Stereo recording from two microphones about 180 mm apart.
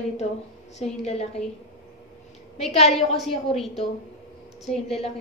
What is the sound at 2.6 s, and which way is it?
Speech, 35° left (ahead or behind).